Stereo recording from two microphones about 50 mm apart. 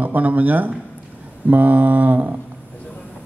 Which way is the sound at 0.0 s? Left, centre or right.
Right.